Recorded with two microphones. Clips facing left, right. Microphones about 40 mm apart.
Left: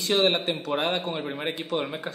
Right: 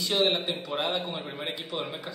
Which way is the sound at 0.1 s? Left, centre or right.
Left.